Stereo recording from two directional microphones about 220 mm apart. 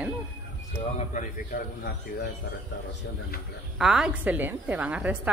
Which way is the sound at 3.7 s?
5° right (ahead or behind).